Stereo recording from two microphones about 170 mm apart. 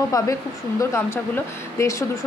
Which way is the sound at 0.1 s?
20° left (ahead or behind).